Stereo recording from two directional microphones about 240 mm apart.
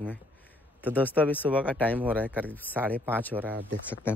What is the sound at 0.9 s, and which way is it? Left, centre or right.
Speech, centre.